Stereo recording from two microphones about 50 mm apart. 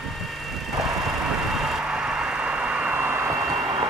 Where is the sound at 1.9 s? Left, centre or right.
Centre.